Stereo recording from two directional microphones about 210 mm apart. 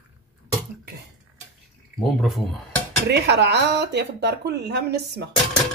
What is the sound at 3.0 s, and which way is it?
Speech, 50° right (ahead or behind).